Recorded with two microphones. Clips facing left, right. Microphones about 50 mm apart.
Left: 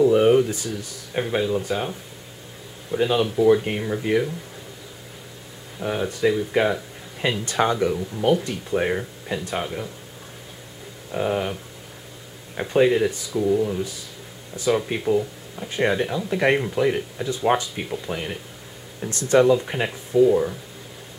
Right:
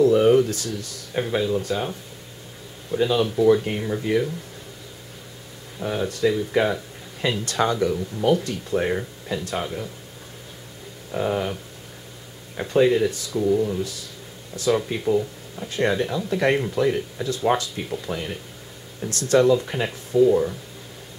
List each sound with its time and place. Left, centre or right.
0.0 s speech: centre
5.9 s speech: centre
11.1 s speech: centre
12.5 s speech: centre